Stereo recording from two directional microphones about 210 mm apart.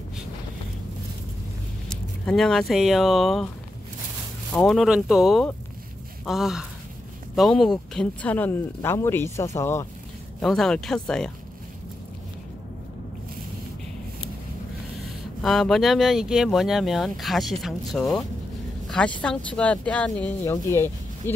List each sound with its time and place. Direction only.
1.9 s speech: 5° left (ahead or behind)
4.5 s speech: 5° left (ahead or behind)
10.4 s speech: centre (ahead or behind)
15.4 s a woman's voice: centre (ahead or behind)